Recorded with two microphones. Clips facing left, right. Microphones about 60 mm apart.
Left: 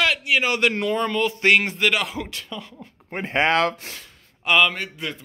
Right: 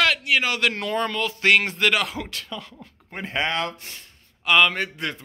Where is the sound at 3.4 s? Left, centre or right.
Left.